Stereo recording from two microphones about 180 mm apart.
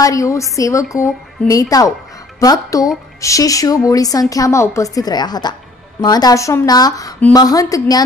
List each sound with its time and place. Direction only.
0.0 s a woman's voice: 20° left (ahead or behind)